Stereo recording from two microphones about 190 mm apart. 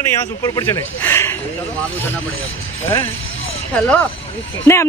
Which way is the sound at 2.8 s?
15° left (ahead or behind).